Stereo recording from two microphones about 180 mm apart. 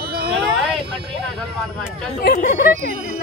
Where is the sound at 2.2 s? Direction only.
50° left (ahead or behind).